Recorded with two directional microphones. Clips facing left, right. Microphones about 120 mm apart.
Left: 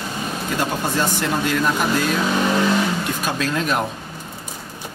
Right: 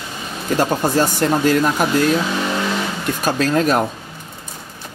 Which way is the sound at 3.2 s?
40° right (ahead or behind).